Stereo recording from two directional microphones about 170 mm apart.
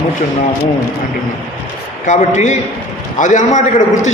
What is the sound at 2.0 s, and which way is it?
A man's voice, 45° left (ahead or behind).